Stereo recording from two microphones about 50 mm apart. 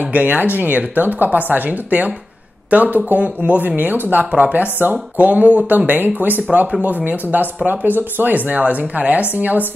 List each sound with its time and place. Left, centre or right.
0.1 s speech: right